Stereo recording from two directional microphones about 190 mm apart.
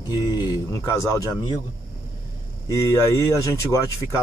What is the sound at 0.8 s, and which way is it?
Speech, 15° left (ahead or behind).